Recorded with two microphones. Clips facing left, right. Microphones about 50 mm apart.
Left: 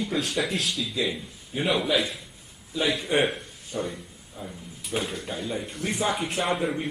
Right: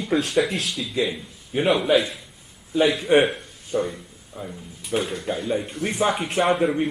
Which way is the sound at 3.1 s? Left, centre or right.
Right.